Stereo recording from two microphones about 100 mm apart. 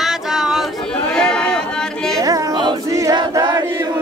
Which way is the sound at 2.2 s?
40° right (ahead or behind).